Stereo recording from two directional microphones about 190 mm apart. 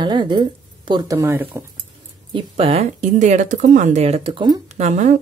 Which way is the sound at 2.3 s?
30° right (ahead or behind).